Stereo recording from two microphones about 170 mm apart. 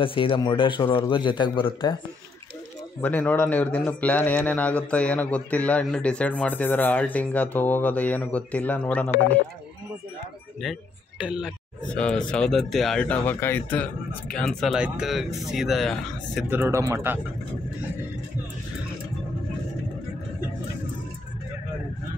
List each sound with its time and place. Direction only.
0.0 s a man's voice: 30° left (ahead or behind)
3.0 s a man's voice: 10° left (ahead or behind)
10.6 s speech: 5° right (ahead or behind)
11.9 s a man's voice: 5° left (ahead or behind)
16.4 s speech: 15° right (ahead or behind)